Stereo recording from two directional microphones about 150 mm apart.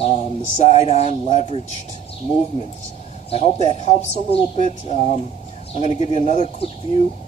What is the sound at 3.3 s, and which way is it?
Speech, 45° left (ahead or behind).